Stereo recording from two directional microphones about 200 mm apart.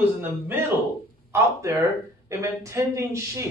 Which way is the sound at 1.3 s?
15° right (ahead or behind).